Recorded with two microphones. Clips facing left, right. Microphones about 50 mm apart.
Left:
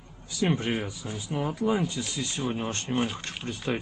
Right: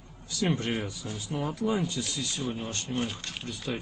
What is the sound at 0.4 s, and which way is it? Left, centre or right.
Speech, centre.